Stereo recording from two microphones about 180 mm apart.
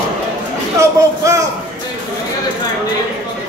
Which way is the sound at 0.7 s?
15° right (ahead or behind).